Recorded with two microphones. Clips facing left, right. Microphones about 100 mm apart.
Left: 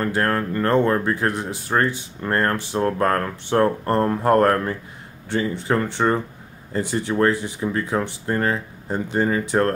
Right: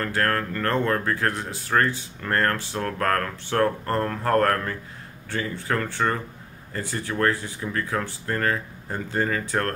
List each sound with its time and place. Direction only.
0.0 s speech: 20° left (ahead or behind)